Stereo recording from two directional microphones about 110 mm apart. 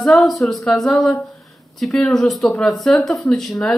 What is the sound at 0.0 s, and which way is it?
Speech, 5° left (ahead or behind).